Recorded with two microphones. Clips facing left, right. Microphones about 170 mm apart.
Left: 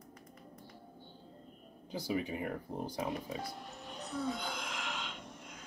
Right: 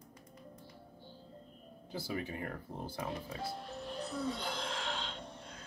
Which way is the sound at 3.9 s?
30° right (ahead or behind).